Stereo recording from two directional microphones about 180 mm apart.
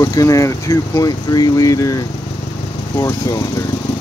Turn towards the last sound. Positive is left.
turn(degrees=20)  # may be behind; listen again after turning